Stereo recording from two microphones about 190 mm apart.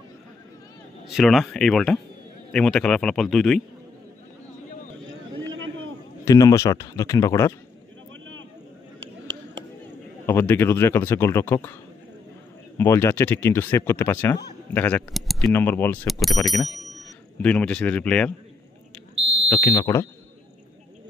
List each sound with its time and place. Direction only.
1.0 s a man's voice: centre (ahead or behind)
5.5 s a sound: 90° right
6.2 s speech: 20° left (ahead or behind)
10.2 s speech: 10° left (ahead or behind)
12.7 s speech: 15° left (ahead or behind)
19.1 s fire alarm: 30° right (ahead or behind)
19.5 s speech: 20° left (ahead or behind)